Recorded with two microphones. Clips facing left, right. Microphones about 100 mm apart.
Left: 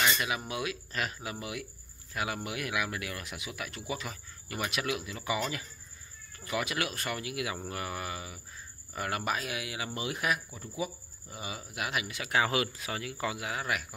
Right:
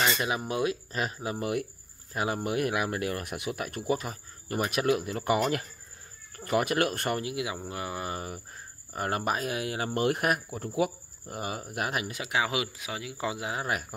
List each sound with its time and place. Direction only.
0.0 s a sound: 35° right (ahead or behind)
0.5 s speech: 35° right (ahead or behind)
1.4 s speech: 50° right (ahead or behind)
2.1 s speech: 35° right (ahead or behind)
7.2 s speech: 25° right (ahead or behind)
8.1 s cricket: 45° right (ahead or behind)
9.9 s speech: 55° right (ahead or behind); by 12.2 s 40° right (ahead or behind)
12.3 s speech: 15° right (ahead or behind)
13.2 s speech: 25° right (ahead or behind)